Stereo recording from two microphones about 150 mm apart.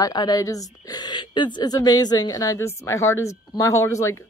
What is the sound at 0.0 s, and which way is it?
Speech, 25° left (ahead or behind).